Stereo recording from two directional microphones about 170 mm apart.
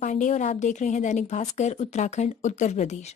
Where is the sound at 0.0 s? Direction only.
45° left (ahead or behind).